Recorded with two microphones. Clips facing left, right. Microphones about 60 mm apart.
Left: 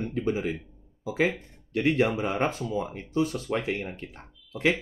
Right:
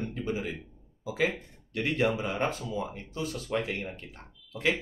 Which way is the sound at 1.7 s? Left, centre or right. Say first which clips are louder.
Left 4 dB; left.